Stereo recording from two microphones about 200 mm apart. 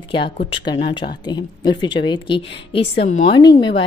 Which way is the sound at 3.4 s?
20° left (ahead or behind).